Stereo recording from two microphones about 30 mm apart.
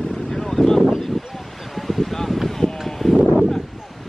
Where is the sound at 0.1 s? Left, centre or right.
Centre.